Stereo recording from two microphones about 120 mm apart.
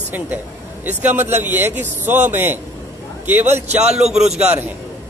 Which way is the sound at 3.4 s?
65° right (ahead or behind).